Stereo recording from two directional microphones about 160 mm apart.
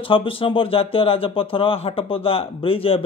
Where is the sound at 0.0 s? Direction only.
35° left (ahead or behind).